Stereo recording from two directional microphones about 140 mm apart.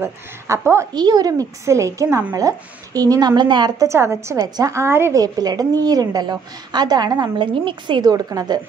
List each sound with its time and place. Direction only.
0.0 s a woman's voice: 20° right (ahead or behind)
0.9 s a woman's voice: 30° right (ahead or behind)
3.8 s a woman's voice: 20° right (ahead or behind)